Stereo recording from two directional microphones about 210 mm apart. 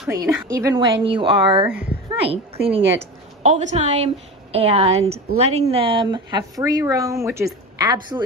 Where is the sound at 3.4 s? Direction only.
35° right (ahead or behind).